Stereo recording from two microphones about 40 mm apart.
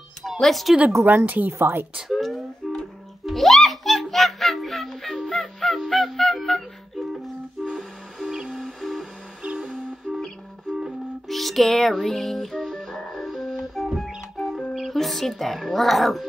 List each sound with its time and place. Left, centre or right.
0.4 s speech: centre
1.0 s speech: right
1.6 s a woman's voice: right
2.1 s music: centre
7.6 s music: centre
8.6 s music: centre
9.6 s music: centre
11.2 s music: centre
14.7 s speech: centre